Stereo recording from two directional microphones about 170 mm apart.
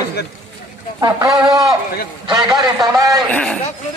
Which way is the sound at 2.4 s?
25° right (ahead or behind).